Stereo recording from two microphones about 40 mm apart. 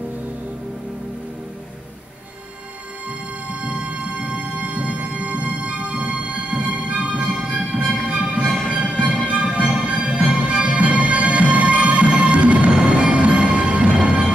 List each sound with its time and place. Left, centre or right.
3.6 s music: right